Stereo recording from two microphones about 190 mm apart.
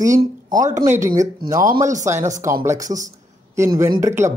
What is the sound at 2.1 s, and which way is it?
Speech, 40° right (ahead or behind).